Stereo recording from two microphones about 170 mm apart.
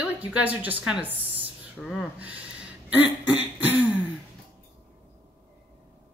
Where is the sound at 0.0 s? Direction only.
10° right (ahead or behind).